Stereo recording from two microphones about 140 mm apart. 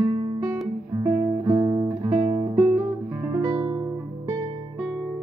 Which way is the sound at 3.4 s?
25° right (ahead or behind).